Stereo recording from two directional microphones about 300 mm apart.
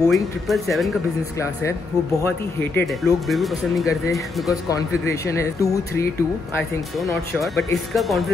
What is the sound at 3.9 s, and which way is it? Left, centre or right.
Speech, centre.